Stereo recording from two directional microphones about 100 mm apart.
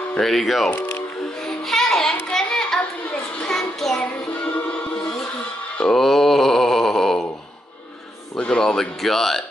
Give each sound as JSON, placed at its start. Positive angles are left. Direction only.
{"t": 0.1, "sound": "speech", "side_deg": 5}
{"t": 0.7, "sound": "speech", "side_deg": 15}
{"t": 1.4, "sound": "music", "side_deg": 5}
{"t": 2.1, "sound": "a sound", "side_deg": 10}
{"t": 3.3, "sound": "music", "side_deg": 5}
{"t": 5.8, "sound": "a sound", "side_deg": 5}
{"t": 8.4, "sound": "speech", "side_deg": 10}